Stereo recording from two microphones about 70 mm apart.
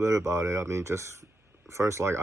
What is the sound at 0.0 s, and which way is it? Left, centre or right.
Speech, right.